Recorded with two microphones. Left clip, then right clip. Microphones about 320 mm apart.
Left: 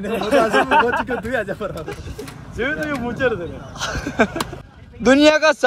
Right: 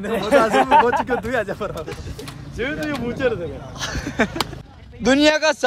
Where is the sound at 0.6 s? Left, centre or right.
Right.